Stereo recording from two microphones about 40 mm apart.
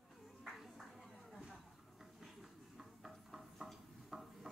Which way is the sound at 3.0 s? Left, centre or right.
Centre.